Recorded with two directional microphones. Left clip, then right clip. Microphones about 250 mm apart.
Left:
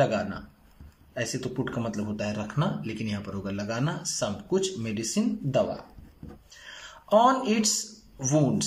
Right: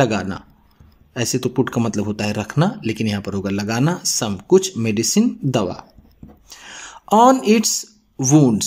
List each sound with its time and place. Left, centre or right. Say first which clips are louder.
0.0 s speech: right 6 dB; right